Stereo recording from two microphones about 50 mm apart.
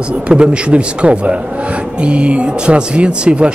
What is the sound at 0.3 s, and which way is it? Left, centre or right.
Speech, right.